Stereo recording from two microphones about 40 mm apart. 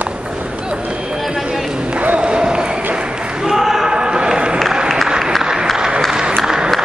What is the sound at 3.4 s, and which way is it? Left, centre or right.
Basketball bounce, centre.